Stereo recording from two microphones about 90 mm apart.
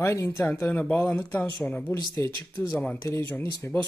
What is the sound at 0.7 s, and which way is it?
Speech, 15° left (ahead or behind).